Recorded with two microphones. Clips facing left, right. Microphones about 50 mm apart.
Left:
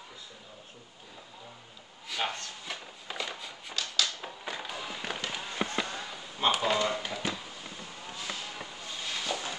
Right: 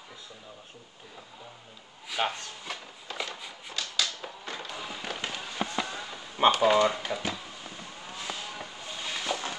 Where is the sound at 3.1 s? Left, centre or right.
Centre.